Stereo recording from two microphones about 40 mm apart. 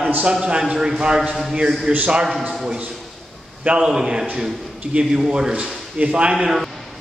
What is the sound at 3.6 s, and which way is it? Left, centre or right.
Speech, right.